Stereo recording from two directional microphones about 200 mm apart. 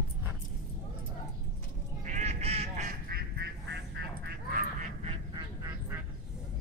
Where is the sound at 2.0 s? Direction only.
35° right (ahead or behind); by 4.4 s 55° right (ahead or behind).